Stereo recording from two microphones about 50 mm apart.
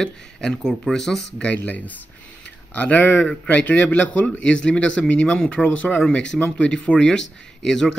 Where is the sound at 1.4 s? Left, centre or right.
Left.